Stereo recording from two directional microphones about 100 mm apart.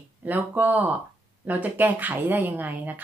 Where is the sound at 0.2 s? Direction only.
15° right (ahead or behind).